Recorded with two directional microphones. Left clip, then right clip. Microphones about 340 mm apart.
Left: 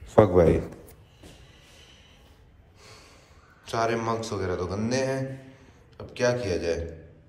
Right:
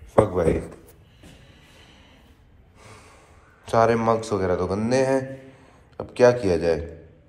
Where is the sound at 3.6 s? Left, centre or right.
Centre.